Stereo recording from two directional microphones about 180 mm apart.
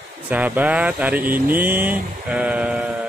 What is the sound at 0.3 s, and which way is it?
Speech, 5° right (ahead or behind).